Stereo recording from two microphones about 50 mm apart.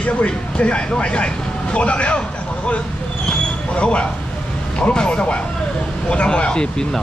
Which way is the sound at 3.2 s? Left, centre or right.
Left.